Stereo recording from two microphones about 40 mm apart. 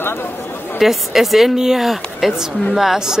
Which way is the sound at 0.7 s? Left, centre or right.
Centre.